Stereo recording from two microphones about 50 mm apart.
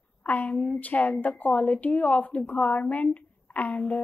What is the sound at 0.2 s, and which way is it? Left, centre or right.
A woman's voice, left.